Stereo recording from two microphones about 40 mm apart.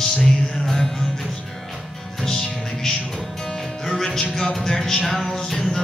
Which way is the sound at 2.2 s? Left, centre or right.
Centre.